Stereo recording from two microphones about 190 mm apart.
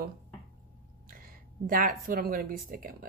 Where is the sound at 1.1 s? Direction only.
50° right (ahead or behind).